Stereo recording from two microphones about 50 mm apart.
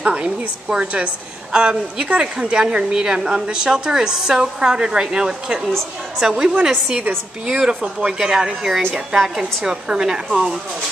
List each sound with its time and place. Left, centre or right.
0.0 s a woman's voice: right